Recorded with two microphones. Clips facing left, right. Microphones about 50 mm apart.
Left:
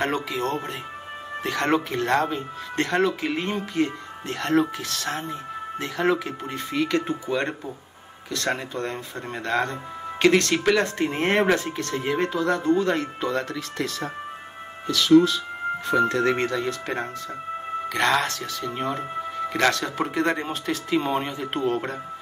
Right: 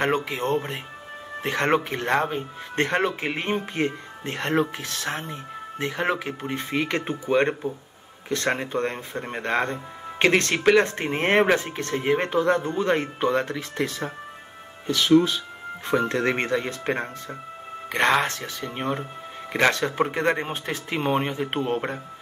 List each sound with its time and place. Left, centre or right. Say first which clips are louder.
0.0 s speech: right 1 dB; right